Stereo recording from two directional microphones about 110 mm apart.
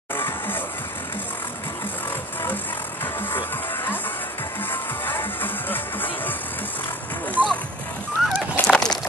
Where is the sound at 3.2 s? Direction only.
20° left (ahead or behind).